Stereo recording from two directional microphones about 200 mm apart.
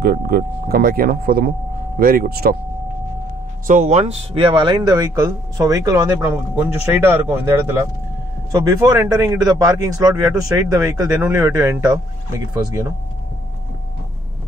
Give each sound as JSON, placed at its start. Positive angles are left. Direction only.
{"t": 0.0, "sound": "speech", "side_deg": -50}
{"t": 3.6, "sound": "speech", "side_deg": -40}